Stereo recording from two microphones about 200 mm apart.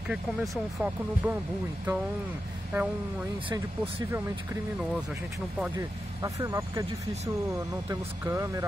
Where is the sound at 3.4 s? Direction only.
25° right (ahead or behind).